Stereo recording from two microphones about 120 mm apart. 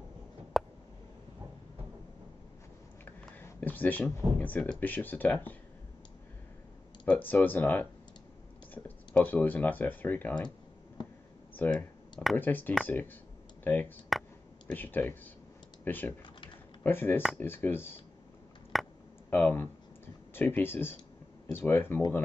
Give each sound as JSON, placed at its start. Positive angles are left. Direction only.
{"t": 0.5, "sound": "a sound", "side_deg": 0}
{"t": 3.1, "sound": "speech", "side_deg": 15}
{"t": 7.1, "sound": "speech", "side_deg": 15}
{"t": 11.5, "sound": "speech", "side_deg": 15}
{"t": 18.7, "sound": "a sound", "side_deg": 0}
{"t": 19.3, "sound": "speech", "side_deg": 20}